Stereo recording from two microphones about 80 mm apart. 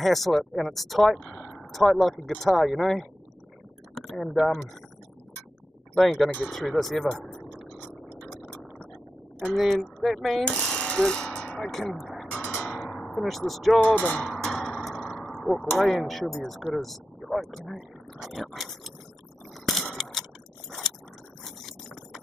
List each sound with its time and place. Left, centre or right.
0.0 s speech: centre
4.2 s speech: centre
5.9 s speech: centre
8.2 s music: centre
9.4 s speech: centre
10.4 s jackhammer: centre
12.3 s music: centre
13.7 s speech: centre
14.2 s a sound: centre
15.7 s speech: centre
19.5 s a sound: centre
21.5 s a sound: centre